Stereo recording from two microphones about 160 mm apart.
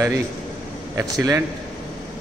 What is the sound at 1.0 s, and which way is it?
Speech, 20° right (ahead or behind).